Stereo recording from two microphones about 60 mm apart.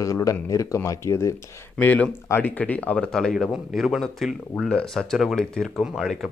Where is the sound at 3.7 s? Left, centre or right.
Centre.